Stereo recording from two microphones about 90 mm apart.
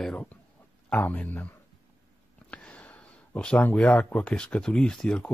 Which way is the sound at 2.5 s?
15° left (ahead or behind).